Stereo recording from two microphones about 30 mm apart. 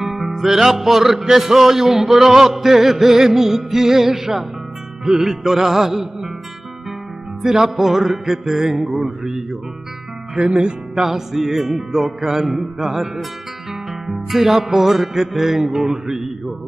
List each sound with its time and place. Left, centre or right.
0.3 s music: centre
7.6 s music: centre
10.4 s music: right
11.0 s music: centre
12.4 s mantra: centre
14.6 s music: centre